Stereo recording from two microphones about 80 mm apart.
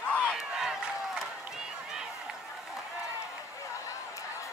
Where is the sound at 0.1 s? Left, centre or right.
Centre.